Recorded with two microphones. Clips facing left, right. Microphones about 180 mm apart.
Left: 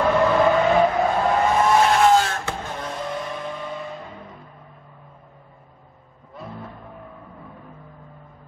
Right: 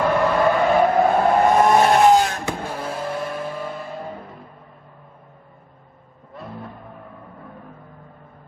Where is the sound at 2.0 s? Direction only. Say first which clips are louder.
Right 2 dB; 15° right (ahead or behind).